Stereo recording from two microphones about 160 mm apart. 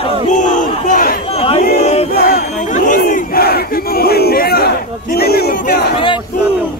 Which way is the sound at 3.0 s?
65° left (ahead or behind).